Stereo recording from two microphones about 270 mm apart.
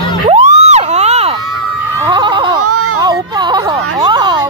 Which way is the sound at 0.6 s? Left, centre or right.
Right.